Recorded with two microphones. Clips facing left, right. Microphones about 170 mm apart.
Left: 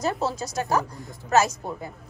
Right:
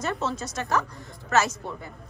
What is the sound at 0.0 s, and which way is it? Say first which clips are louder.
A woman's voice: left 3 dB; 35° left (ahead or behind).